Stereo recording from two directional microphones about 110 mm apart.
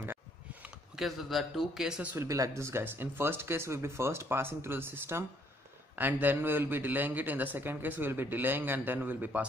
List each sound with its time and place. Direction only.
0.0 s a sound: 20° right (ahead or behind)
0.9 s a man's voice: centre (ahead or behind)
2.1 s a man's voice: 30° right (ahead or behind)